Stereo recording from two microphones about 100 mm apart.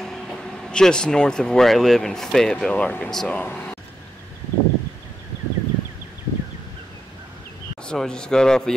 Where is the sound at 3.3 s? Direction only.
15° left (ahead or behind).